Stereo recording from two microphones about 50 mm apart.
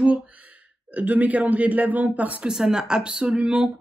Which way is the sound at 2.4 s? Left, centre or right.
Centre.